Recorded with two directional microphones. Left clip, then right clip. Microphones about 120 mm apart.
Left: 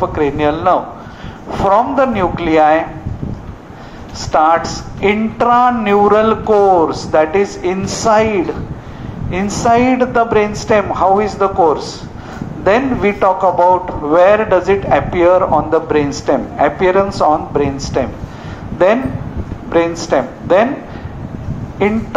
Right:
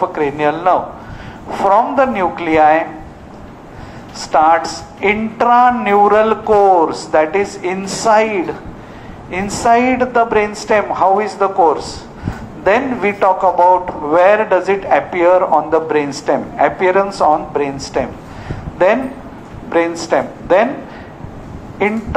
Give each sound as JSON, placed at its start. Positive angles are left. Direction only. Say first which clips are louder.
{"t": 0.0, "sound": "a woman's voice", "louder": "left 1 dB", "side_deg": -15}
{"t": 4.2, "sound": "a woman's voice", "louder": "even", "side_deg": -15}
{"t": 21.8, "sound": "speech", "louder": "left 1 dB", "side_deg": -20}